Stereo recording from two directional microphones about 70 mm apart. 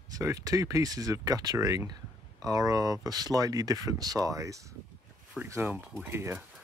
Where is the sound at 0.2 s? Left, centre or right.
Right.